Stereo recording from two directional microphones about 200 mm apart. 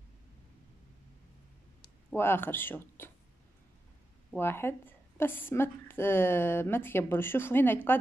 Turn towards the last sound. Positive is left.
turn(degrees=10)  # may be behind; listen again after turning